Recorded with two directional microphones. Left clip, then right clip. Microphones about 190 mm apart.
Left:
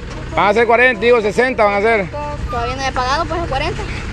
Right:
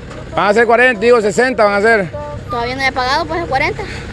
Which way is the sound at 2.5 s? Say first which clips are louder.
Right 4 dB; 55° right (ahead or behind).